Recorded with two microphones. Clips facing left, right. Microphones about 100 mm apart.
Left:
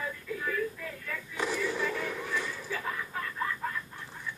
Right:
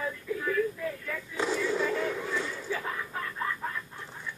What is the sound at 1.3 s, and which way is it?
Artillery fire, 25° right (ahead or behind).